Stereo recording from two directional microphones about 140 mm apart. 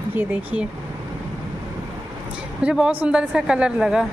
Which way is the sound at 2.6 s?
5° right (ahead or behind).